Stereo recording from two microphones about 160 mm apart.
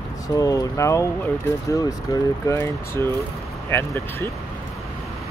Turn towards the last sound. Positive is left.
turn(degrees=15)  # may be behind; listen again after turning